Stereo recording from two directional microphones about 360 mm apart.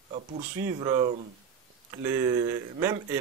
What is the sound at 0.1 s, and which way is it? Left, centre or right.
Speech, centre.